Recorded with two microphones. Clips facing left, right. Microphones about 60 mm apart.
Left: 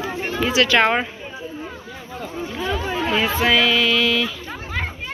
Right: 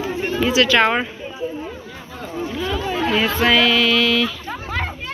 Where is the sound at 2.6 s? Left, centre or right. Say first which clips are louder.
Right 1 dB; left.